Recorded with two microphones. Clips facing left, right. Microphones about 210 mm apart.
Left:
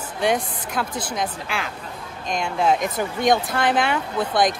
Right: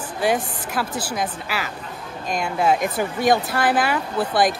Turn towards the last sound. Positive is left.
turn(degrees=-5)  # may be behind; listen again after turning